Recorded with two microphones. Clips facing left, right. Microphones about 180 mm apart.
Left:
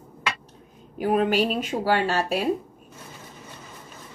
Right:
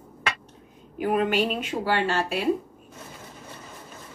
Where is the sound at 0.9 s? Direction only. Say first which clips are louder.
Left 2 dB; 35° left (ahead or behind).